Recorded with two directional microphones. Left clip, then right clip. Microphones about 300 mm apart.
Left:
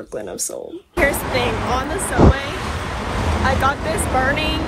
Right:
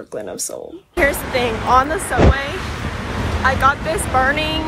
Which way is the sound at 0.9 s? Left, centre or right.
Centre.